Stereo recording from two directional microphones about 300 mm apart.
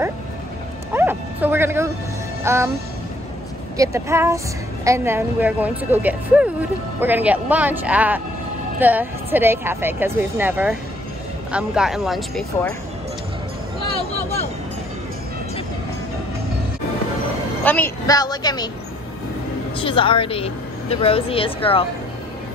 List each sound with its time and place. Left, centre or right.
0.9 s music: centre
3.7 s speech: centre
17.6 s a woman's voice: centre
19.8 s a woman's voice: centre